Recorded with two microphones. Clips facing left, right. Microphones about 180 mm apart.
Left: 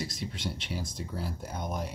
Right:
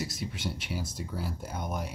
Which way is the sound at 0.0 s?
5° right (ahead or behind).